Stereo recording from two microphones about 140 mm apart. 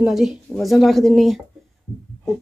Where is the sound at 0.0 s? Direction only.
5° right (ahead or behind).